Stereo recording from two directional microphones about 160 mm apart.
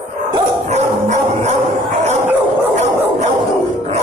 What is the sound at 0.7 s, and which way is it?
Dog, 45° right (ahead or behind).